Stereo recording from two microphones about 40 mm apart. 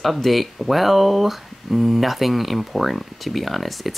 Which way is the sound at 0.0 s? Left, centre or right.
Centre.